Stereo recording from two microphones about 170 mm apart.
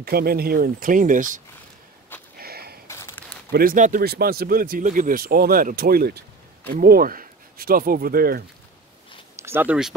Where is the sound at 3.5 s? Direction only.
55° right (ahead or behind).